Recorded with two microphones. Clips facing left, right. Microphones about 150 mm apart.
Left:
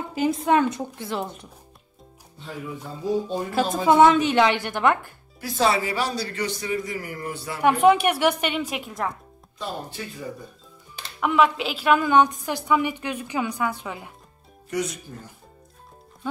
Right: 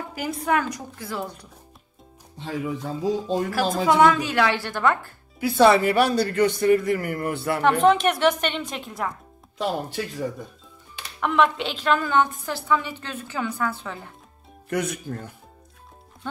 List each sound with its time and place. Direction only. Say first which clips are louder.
0.1 s a woman's voice: left 4 dB; 25° left (ahead or behind)
2.3 s speech: right 6 dB; 90° right
3.5 s a woman's voice: left 3 dB; 20° left (ahead or behind)
5.6 s speech: right 6 dB; 60° right (ahead or behind)
7.6 s a woman's voice: left 1 dB; 10° left (ahead or behind)
11.1 s a woman's voice: left 1 dB; 5° left (ahead or behind)
14.7 s speech: right 2 dB; 55° right (ahead or behind)